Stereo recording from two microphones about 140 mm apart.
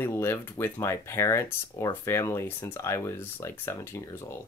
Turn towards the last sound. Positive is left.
turn(degrees=15)  # may be behind; listen again after turning